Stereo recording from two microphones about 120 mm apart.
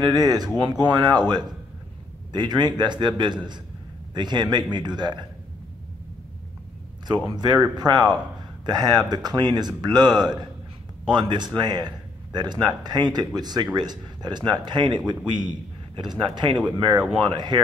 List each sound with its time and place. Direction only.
0.0 s a man's voice: 30° right (ahead or behind)
7.2 s a man's voice: 35° right (ahead or behind)